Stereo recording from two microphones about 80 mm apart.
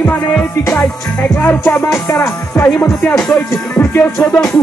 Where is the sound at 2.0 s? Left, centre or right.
Left.